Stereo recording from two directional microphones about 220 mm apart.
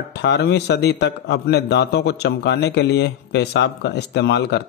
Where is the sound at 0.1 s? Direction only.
50° left (ahead or behind).